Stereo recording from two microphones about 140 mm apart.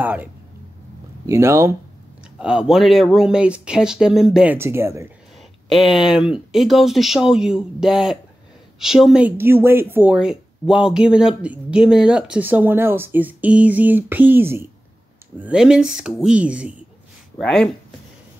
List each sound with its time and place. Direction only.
0.0 s speech: 10° right (ahead or behind)
2.3 s speech: 5° right (ahead or behind)
4.6 s speech: 20° right (ahead or behind)
5.7 s speech: centre (ahead or behind)
9.4 s speech: 15° right (ahead or behind)
17.4 s speech: 5° left (ahead or behind)